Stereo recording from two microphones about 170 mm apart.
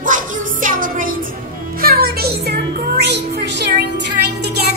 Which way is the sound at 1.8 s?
65° right (ahead or behind).